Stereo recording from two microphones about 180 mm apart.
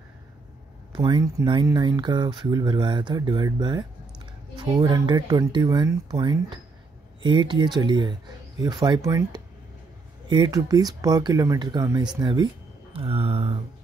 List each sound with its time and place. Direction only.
0.9 s speech: 25° right (ahead or behind)